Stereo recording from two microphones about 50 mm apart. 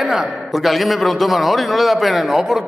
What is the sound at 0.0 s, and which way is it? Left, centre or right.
A man's voice, centre.